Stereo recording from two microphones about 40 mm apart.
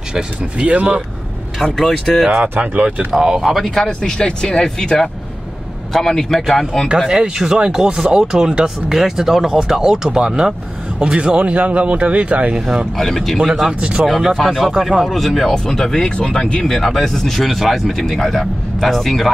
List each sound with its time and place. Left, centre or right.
0.1 s speech: right
1.6 s speech: centre
2.6 s speech: right
3.1 s speech: centre
3.8 s speech: centre
7.1 s speech: centre
12.9 s speech: centre
13.4 s speech: centre
14.5 s speech: centre
15.0 s speech: centre
16.6 s speech: centre